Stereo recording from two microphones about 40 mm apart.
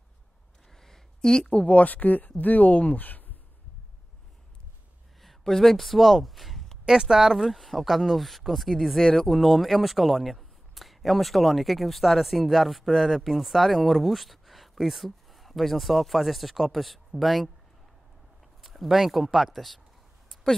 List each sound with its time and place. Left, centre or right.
0.7 s a sound: centre
1.7 s speech: left
5.2 s speech: centre
6.9 s speech: centre
18.6 s speech: centre